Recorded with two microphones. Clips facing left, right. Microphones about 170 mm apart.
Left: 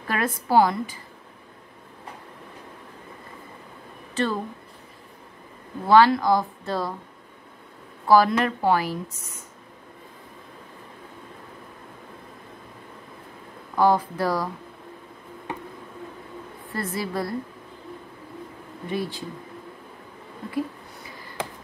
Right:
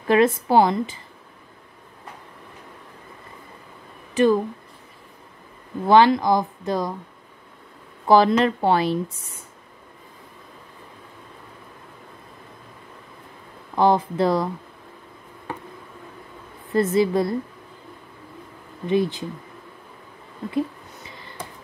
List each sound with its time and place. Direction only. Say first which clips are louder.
0.1 s speech: right 5 dB; 20° right (ahead or behind)
4.1 s speech: right 8 dB; 15° right (ahead or behind)
5.9 s speech: right 1 dB; 20° right (ahead or behind)
8.1 s speech: right 2 dB; 25° right (ahead or behind)
13.7 s speech: right 2 dB; 25° right (ahead or behind)
16.7 s speech: right 10 dB; 20° right (ahead or behind)
18.9 s speech: right 8 dB; 20° right (ahead or behind)
20.5 s a sound: right 4 dB; 25° right (ahead or behind)